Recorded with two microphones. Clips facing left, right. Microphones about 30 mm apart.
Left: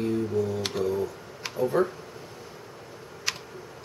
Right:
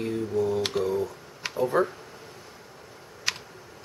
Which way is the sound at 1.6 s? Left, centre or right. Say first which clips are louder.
Even; centre.